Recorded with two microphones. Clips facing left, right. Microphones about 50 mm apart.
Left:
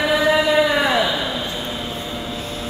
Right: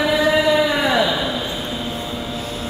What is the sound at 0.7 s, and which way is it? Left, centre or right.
Speech, centre.